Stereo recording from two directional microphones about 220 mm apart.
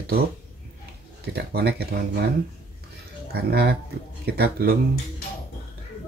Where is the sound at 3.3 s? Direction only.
45° right (ahead or behind).